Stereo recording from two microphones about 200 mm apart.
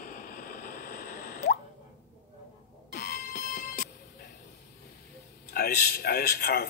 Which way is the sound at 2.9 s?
40° left (ahead or behind).